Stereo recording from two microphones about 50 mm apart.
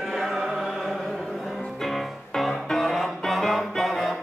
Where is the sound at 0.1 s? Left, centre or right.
Centre.